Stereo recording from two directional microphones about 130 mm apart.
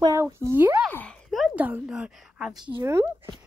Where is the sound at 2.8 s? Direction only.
20° right (ahead or behind).